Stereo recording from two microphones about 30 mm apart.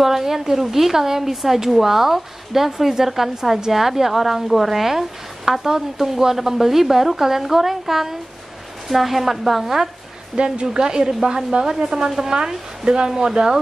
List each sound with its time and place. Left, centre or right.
0.0 s speech: centre
10.3 s a woman's voice: right